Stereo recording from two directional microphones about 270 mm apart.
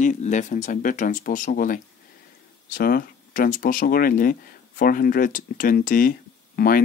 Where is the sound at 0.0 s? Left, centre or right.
Left.